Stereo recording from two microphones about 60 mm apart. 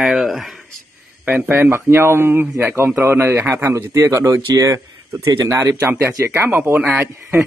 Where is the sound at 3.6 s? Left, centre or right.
Right.